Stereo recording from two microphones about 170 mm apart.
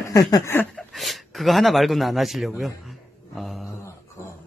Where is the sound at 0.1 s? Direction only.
20° left (ahead or behind).